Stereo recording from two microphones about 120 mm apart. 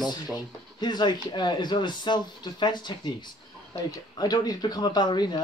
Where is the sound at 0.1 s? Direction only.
35° left (ahead or behind).